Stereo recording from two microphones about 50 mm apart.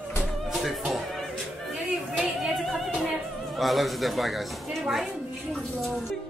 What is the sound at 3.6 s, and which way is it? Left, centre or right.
A woman's voice, centre.